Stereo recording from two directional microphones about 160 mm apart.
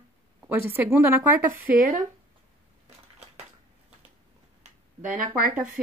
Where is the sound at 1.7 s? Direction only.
60° right (ahead or behind).